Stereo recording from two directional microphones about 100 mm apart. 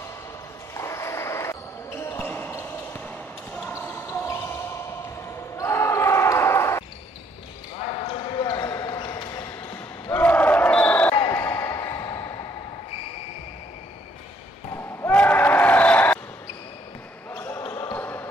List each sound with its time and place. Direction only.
0.7 s basketball bounce: 30° left (ahead or behind)
5.6 s basketball bounce: 30° left (ahead or behind)
7.8 s basketball bounce: 65° left (ahead or behind)
8.4 s basketball bounce: 40° left (ahead or behind)
10.1 s crowd: 15° left (ahead or behind)
11.3 s a sound: 25° left (ahead or behind)
14.7 s basketball bounce: 30° left (ahead or behind)
15.1 s a sound: 15° left (ahead or behind)
17.4 s basketball bounce: 40° left (ahead or behind)
17.9 s basketball bounce: 15° left (ahead or behind)